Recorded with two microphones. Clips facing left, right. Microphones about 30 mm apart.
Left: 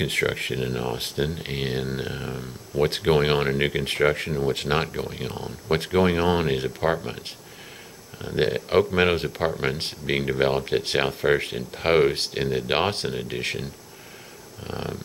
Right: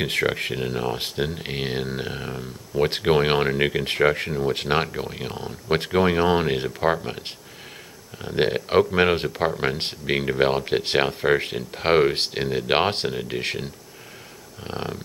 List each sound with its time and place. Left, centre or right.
0.0 s speech: centre
13.1 s speech: centre